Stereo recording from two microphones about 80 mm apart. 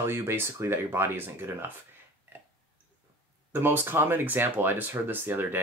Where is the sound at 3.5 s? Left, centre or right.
Right.